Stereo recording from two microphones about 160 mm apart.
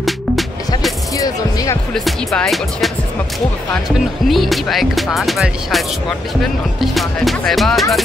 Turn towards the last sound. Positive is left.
turn(degrees=0)  # may be behind; listen again after turning